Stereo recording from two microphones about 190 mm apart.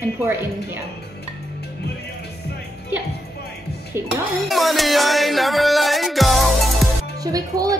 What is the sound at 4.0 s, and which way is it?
Speech, 15° right (ahead or behind).